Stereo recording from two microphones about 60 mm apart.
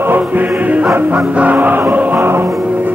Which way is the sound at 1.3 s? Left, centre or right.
Right.